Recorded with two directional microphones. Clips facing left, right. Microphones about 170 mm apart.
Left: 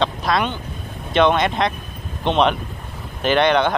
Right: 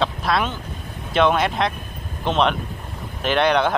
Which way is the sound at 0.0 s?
Centre (ahead or behind).